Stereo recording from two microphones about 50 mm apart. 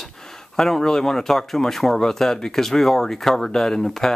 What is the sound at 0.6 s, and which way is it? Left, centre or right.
Speech, centre.